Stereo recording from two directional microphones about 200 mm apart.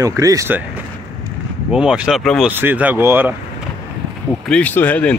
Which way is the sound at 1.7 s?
5° right (ahead or behind).